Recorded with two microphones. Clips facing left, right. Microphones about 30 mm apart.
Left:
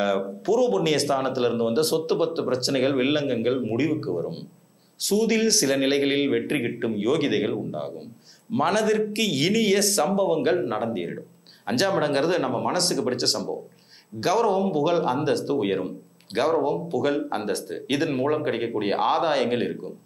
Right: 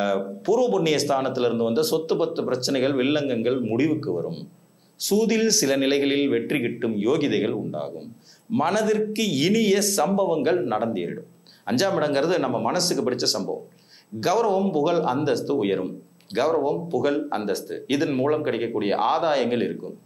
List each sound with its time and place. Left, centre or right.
0.0 s speech: centre